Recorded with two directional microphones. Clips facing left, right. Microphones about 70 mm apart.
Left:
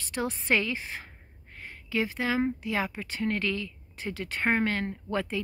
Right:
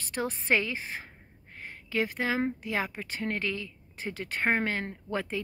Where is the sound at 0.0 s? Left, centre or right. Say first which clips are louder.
Left 1 dB; right.